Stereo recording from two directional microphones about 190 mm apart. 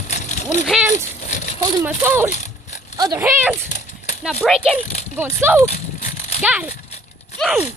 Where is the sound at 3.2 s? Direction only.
10° right (ahead or behind).